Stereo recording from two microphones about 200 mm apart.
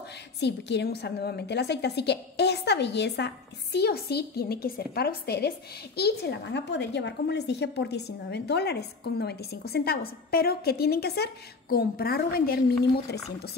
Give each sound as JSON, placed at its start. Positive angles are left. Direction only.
{"t": 0.4, "sound": "a woman's voice", "side_deg": 60}